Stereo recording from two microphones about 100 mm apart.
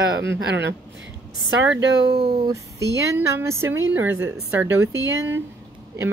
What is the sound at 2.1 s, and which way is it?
Speech, 70° right (ahead or behind).